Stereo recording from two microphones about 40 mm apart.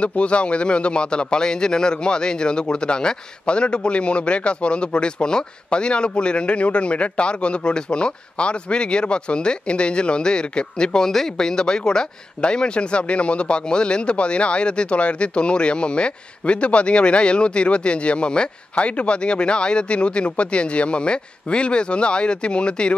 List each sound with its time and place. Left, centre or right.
0.0 s speech: left